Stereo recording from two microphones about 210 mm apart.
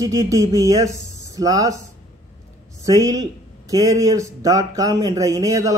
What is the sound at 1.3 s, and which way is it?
Speech, 15° right (ahead or behind).